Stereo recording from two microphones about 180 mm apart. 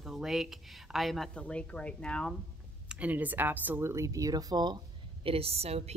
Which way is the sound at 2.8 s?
10° right (ahead or behind).